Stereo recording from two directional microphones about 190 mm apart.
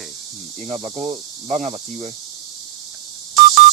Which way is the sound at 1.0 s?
40° right (ahead or behind).